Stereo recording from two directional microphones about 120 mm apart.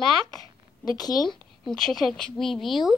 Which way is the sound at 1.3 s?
5° left (ahead or behind).